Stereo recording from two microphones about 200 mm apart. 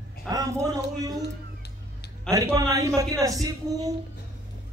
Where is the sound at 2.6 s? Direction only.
15° right (ahead or behind).